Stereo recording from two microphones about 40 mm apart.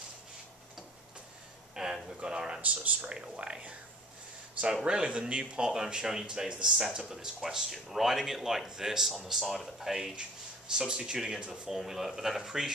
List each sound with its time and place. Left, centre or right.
1.8 s a sound: centre
2.2 s speech: right
2.6 s speech: right
3.1 s speech: right
4.8 s speech: right